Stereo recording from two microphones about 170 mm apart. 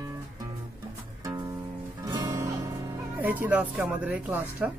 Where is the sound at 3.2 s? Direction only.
10° right (ahead or behind).